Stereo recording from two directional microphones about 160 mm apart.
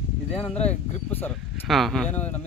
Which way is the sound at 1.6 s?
Centre (ahead or behind).